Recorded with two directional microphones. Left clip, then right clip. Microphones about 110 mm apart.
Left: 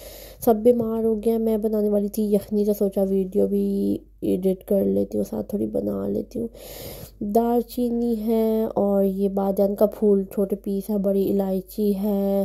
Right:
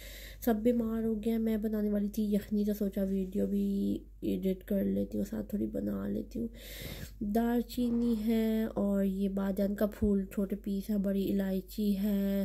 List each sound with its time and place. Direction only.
0.5 s a woman's voice: 55° left (ahead or behind)
5.7 s speech: 10° left (ahead or behind)
6.0 s a woman's voice: 55° left (ahead or behind)